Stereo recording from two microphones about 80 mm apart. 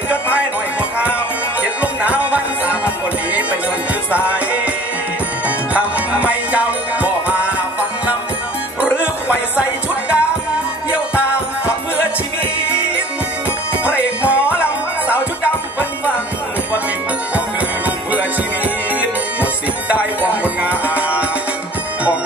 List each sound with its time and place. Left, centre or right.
1.6 s music: centre
4.1 s music: centre
5.7 s music: centre
8.8 s music: centre
12.6 s music: centre
17.8 s music: right